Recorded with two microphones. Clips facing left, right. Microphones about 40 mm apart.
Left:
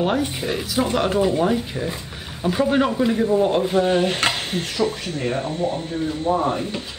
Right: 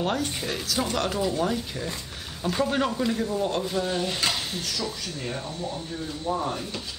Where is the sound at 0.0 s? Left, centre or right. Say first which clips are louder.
Left 6 dB; centre.